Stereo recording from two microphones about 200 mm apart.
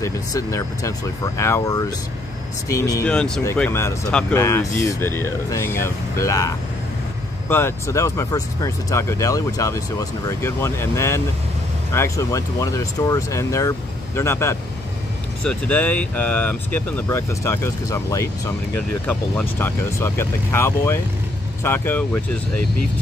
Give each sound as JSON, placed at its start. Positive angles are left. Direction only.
{"t": 0.0, "sound": "speech", "side_deg": 15}
{"t": 3.1, "sound": "speech", "side_deg": 5}
{"t": 18.8, "sound": "speech", "side_deg": 5}